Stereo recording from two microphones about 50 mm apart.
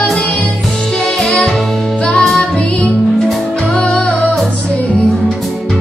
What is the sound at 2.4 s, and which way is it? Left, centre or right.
Music, left.